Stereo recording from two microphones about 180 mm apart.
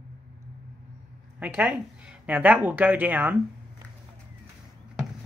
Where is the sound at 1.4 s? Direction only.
10° right (ahead or behind).